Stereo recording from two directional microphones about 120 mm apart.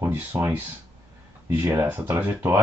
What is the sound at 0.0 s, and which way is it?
Speech, 20° right (ahead or behind).